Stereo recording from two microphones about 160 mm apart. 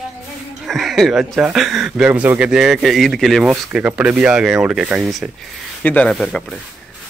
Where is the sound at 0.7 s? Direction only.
Centre (ahead or behind).